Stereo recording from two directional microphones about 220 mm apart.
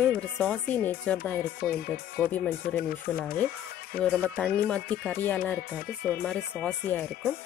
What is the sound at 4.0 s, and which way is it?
Speech, 5° left (ahead or behind).